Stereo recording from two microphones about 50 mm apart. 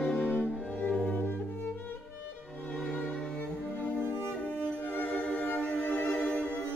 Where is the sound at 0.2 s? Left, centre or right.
Right.